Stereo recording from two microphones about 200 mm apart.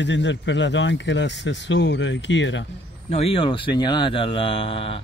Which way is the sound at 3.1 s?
30° left (ahead or behind).